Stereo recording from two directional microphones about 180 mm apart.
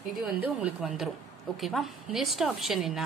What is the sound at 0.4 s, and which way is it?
Speech, 5° right (ahead or behind).